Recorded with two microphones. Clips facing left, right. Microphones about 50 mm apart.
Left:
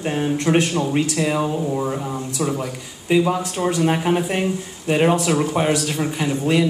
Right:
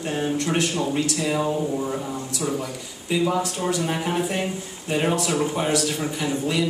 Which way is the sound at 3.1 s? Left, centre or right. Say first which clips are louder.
Left 4 dB; left.